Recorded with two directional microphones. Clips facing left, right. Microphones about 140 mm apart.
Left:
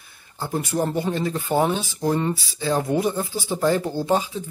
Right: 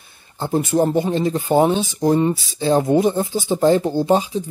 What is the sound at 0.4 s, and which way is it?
Speech, 25° right (ahead or behind).